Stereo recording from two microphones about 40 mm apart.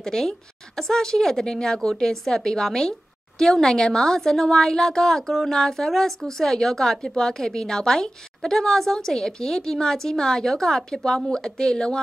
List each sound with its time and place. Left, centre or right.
0.0 s a woman's voice: centre